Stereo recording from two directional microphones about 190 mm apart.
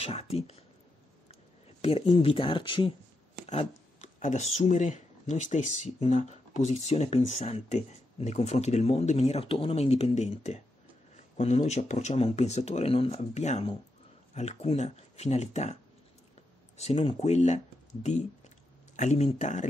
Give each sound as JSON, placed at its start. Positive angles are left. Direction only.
{"t": 0.0, "sound": "speech", "side_deg": 35}
{"t": 3.4, "sound": "a sound", "side_deg": 35}
{"t": 4.6, "sound": "speech", "side_deg": 40}
{"t": 18.9, "sound": "speech", "side_deg": 35}